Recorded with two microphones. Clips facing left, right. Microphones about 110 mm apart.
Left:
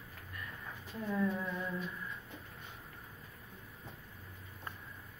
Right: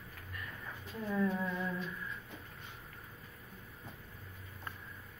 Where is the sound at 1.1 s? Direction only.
Centre (ahead or behind).